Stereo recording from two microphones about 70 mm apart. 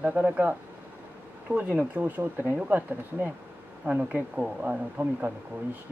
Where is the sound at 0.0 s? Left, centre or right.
Right.